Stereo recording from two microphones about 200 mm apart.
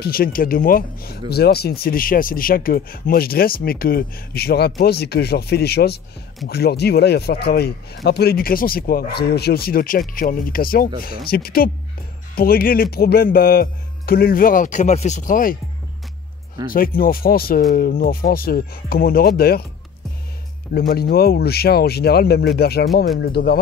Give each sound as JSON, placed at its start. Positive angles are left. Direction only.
{"t": 0.0, "sound": "speech", "side_deg": 45}
{"t": 16.6, "sound": "speech", "side_deg": 45}
{"t": 20.7, "sound": "speech", "side_deg": 50}